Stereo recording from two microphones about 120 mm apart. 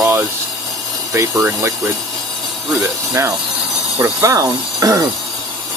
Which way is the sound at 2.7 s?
25° right (ahead or behind).